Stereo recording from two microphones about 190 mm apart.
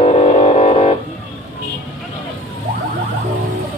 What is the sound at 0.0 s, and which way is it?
Music, 35° left (ahead or behind).